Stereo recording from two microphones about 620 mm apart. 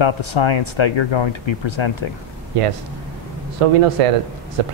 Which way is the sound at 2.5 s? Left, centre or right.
Right.